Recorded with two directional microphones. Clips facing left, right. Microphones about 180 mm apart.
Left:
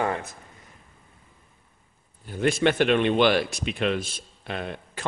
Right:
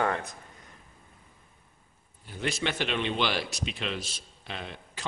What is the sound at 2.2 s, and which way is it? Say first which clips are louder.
Speech: left 9 dB; 50° left (ahead or behind).